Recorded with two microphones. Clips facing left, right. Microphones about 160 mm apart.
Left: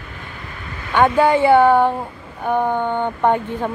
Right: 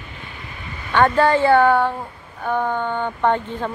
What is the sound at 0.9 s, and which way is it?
Speech, 10° left (ahead or behind).